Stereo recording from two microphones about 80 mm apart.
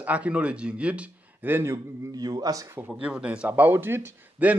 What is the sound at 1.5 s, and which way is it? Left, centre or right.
Speech, right.